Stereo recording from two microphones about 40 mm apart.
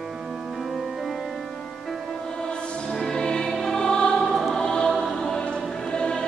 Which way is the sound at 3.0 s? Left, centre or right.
Centre.